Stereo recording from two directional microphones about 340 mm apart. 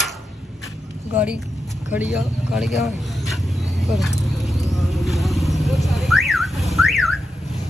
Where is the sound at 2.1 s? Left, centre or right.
Centre.